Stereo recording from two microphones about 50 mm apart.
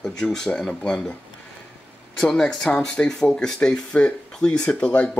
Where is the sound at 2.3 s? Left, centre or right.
Centre.